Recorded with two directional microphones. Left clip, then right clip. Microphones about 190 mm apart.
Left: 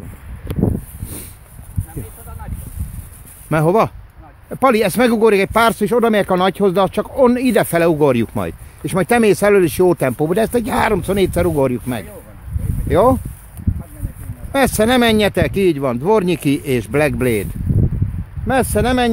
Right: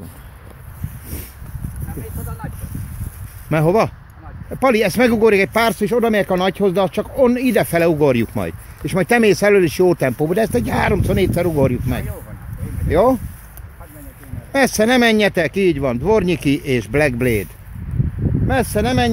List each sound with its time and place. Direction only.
3.4 s speech: 30° left (ahead or behind)
14.5 s speech: 30° left (ahead or behind)
18.5 s speech: 40° left (ahead or behind)